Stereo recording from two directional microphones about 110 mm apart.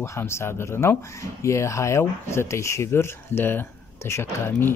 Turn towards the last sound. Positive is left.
turn(degrees=20)  # may be behind; listen again after turning